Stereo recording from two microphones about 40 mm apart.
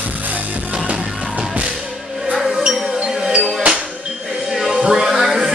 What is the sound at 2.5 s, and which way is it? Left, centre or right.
Music, centre.